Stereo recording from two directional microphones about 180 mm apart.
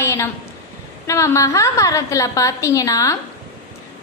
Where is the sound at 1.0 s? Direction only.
15° left (ahead or behind).